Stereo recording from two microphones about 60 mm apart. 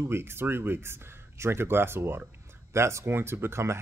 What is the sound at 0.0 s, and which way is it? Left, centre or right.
A man's voice, right.